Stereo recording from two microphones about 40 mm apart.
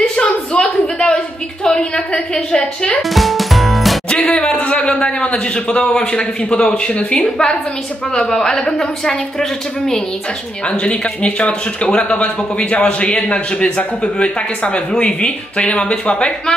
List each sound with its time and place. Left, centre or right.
0.1 s a sound: left
3.0 s music: centre
4.4 s speech: left
7.1 s a woman's voice: centre
10.7 s speech: left